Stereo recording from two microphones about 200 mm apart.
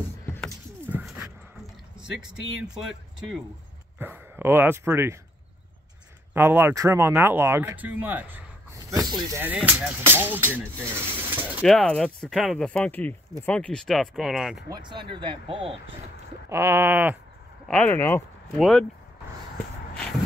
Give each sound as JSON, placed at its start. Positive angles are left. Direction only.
{"t": 0.8, "sound": "dog", "side_deg": -10}
{"t": 2.0, "sound": "speech", "side_deg": -5}
{"t": 6.3, "sound": "speech", "side_deg": -10}
{"t": 8.9, "sound": "speech", "side_deg": -20}
{"t": 10.9, "sound": "a sound", "side_deg": -10}
{"t": 11.6, "sound": "speech", "side_deg": 5}
{"t": 14.7, "sound": "speech", "side_deg": -20}
{"t": 16.4, "sound": "speech", "side_deg": -15}
{"t": 17.6, "sound": "speech", "side_deg": 5}